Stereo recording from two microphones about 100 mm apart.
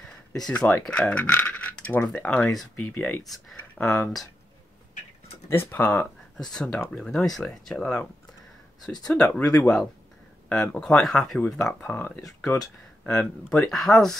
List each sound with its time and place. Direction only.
0.5 s coin: 15° left (ahead or behind)
2.1 s speech: 10° left (ahead or behind)
5.5 s speech: 20° left (ahead or behind)
6.3 s speech: 5° left (ahead or behind)
9.0 s speech: 10° left (ahead or behind)
12.3 s speech: 35° left (ahead or behind)
13.0 s speech: 15° left (ahead or behind)